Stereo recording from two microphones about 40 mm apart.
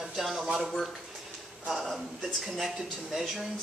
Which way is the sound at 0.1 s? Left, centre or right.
Centre.